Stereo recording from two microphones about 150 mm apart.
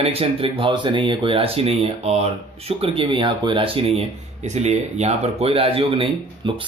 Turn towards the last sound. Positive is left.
turn(degrees=-35)  # may be behind; listen again after turning